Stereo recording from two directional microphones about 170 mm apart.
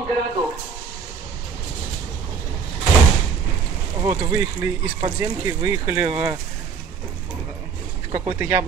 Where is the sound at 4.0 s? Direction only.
20° right (ahead or behind).